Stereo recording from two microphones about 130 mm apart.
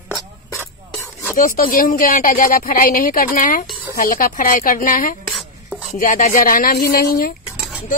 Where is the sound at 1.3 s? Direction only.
90° left.